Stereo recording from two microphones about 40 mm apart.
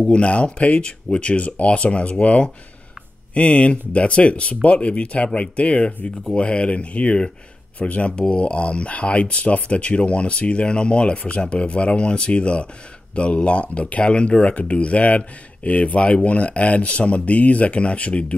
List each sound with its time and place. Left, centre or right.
0.1 s speech: left